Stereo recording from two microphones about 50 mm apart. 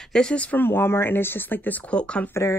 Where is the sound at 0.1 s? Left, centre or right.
Left.